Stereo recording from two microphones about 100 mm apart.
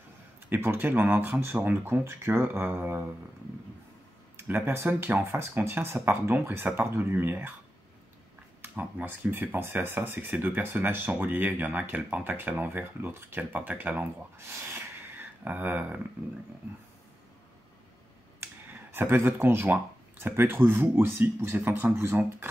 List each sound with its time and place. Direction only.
0.5 s speech: 20° right (ahead or behind)
4.4 s speech: 20° right (ahead or behind)
8.6 s speech: 15° right (ahead or behind)
18.4 s speech: 20° right (ahead or behind)